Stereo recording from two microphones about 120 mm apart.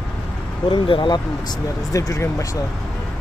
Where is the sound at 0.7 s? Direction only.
45° left (ahead or behind).